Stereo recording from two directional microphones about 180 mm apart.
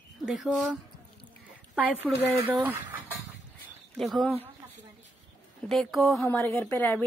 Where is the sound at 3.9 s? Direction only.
Centre (ahead or behind).